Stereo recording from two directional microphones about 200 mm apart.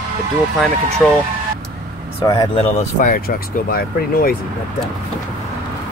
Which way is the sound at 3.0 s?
45° left (ahead or behind).